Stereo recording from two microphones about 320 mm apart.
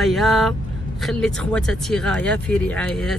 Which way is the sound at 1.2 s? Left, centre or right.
Centre.